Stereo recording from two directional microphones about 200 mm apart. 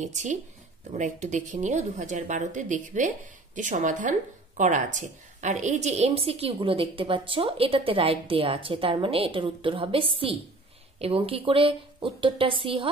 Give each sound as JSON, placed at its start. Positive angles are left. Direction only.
{"t": 0.0, "sound": "a woman's voice", "side_deg": -35}